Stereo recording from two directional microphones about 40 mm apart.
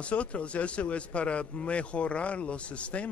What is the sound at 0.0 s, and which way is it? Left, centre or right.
A man's voice, left.